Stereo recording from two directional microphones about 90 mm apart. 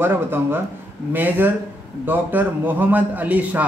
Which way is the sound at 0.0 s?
25° right (ahead or behind).